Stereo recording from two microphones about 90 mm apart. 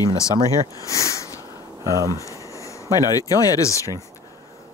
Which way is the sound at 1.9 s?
35° right (ahead or behind).